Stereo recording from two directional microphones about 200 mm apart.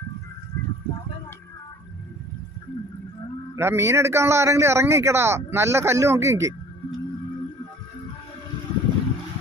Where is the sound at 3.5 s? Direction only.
15° right (ahead or behind).